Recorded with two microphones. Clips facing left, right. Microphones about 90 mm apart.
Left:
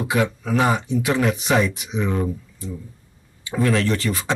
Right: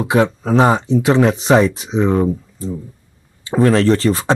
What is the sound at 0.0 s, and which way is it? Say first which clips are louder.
Speech: right 6 dB; 30° right (ahead or behind).